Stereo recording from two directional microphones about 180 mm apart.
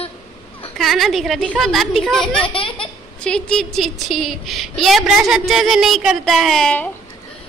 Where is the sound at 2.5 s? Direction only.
30° left (ahead or behind).